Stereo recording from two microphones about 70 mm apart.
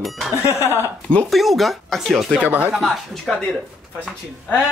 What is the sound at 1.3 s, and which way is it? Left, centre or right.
Speech, centre.